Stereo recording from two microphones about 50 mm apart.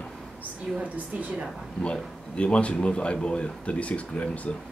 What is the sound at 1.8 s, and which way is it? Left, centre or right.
Speech, left.